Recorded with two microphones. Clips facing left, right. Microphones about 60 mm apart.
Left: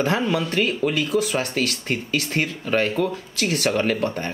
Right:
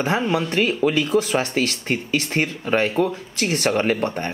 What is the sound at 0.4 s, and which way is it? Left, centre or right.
Speech, right.